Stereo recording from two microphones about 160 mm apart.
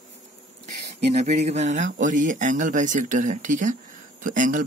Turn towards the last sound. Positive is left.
turn(degrees=-55)  # may be behind; listen again after turning